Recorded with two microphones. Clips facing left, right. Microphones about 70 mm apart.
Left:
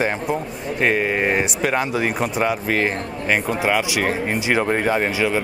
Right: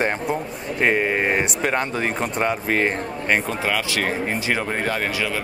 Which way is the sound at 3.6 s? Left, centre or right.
Centre.